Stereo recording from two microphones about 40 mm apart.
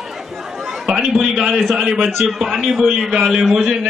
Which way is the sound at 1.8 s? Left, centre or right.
Centre.